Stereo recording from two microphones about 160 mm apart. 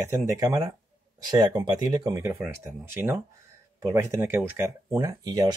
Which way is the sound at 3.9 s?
15° right (ahead or behind).